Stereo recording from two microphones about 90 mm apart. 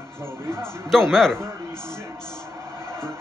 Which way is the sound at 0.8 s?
5° left (ahead or behind).